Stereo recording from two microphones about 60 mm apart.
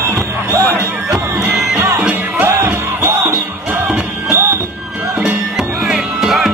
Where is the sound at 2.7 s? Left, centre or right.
Right.